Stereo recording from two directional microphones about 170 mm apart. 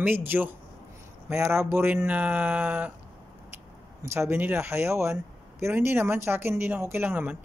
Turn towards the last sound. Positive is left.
turn(degrees=-10)  # may be behind; listen again after turning